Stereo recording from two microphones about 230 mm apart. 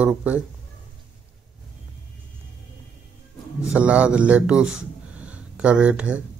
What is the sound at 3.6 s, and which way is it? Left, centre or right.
A man's voice, centre.